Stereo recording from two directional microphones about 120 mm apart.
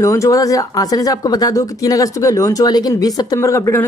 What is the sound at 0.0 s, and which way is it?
Speech, 25° left (ahead or behind).